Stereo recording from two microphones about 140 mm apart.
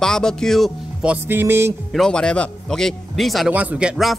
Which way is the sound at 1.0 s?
15° right (ahead or behind).